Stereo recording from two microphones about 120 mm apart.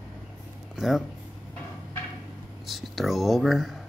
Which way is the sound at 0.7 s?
Centre (ahead or behind).